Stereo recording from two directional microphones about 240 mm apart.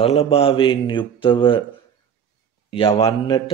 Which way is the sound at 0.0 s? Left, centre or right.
Left.